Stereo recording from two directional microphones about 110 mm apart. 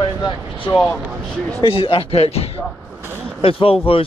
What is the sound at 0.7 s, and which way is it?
Speech, 45° left (ahead or behind).